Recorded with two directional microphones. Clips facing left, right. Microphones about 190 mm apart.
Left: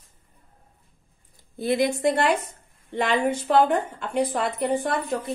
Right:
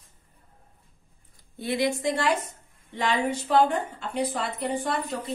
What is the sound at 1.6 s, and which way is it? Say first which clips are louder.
Speech: left 4 dB; 50° left (ahead or behind).